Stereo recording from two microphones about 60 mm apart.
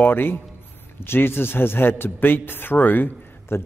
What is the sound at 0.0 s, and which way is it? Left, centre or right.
A man's voice, left.